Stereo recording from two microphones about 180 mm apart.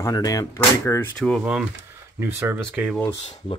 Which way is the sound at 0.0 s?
20° left (ahead or behind).